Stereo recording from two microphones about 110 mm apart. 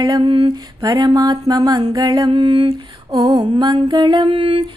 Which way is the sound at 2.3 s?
55° right (ahead or behind).